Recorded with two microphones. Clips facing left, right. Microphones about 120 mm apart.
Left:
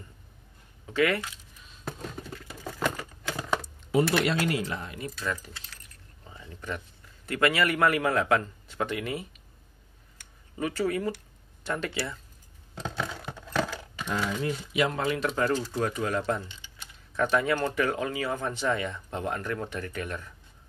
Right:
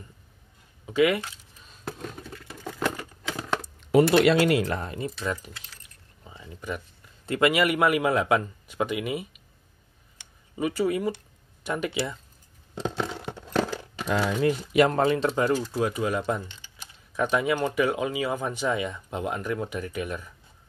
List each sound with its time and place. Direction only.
0.8 s speech: 15° right (ahead or behind)
2.6 s a sound: centre (ahead or behind)
3.9 s speech: 85° right
4.7 s speech: 35° right (ahead or behind)
5.0 s speech: 20° right (ahead or behind)
6.2 s a sound: 15° right (ahead or behind)
7.2 s speech: 20° right (ahead or behind)
10.6 s speech: 10° right (ahead or behind)
14.0 s speech: 90° right
14.7 s speech: 50° right (ahead or behind)
15.0 s speech: 30° right (ahead or behind)
15.3 s speech: 15° right (ahead or behind)